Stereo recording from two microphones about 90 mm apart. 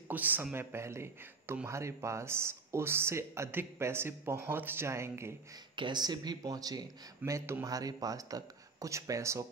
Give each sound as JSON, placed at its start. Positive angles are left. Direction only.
{"t": 0.1, "sound": "speech", "side_deg": -20}
{"t": 5.8, "sound": "speech", "side_deg": -55}